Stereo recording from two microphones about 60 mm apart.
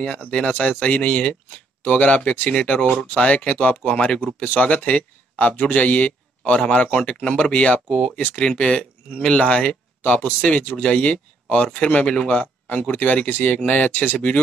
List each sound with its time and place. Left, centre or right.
0.3 s speech: centre